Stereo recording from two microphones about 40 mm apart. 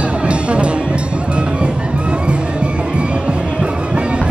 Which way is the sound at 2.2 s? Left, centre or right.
Right.